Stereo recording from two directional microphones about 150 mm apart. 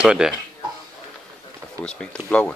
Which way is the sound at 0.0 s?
5° right (ahead or behind).